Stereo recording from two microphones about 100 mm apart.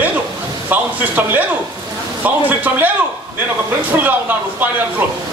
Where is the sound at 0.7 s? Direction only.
15° right (ahead or behind).